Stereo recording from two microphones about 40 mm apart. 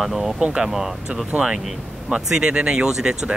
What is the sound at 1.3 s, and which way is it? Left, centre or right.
Speech, right.